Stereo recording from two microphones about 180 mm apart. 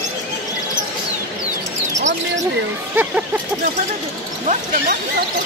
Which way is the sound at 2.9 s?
10° right (ahead or behind).